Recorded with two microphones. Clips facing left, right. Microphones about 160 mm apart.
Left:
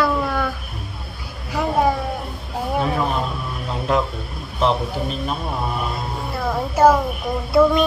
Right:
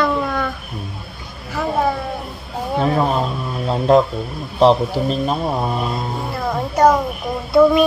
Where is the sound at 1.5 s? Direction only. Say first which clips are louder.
Even; 15° left (ahead or behind).